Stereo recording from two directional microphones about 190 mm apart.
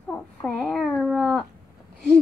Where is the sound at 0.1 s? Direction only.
5° left (ahead or behind).